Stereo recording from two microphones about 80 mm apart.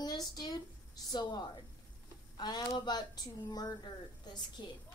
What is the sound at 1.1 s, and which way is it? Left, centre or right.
Speech, left.